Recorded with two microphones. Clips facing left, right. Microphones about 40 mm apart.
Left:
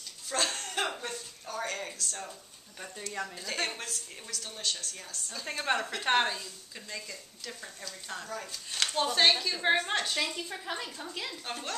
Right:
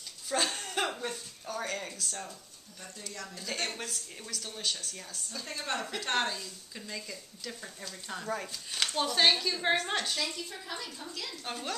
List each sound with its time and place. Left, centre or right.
0.3 s a sound: centre
0.7 s chuckle: centre
1.0 s a sound: centre
3.3 s speech: centre
3.7 s a woman's voice: centre
5.5 s a woman's voice: left
10.1 s speech: left
11.4 s a woman's voice: centre